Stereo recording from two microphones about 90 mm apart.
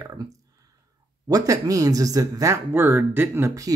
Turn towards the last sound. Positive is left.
turn(degrees=-35)  # may be behind; listen again after turning